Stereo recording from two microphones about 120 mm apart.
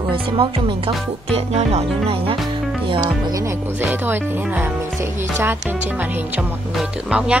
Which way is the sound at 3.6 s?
15° right (ahead or behind).